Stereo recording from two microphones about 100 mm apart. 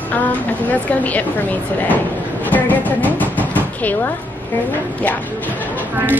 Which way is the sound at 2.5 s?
15° left (ahead or behind).